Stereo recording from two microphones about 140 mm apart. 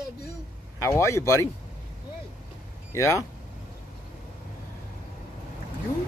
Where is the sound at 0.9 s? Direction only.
20° left (ahead or behind).